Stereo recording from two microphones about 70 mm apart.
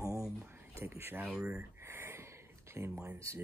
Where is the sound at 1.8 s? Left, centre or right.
Right.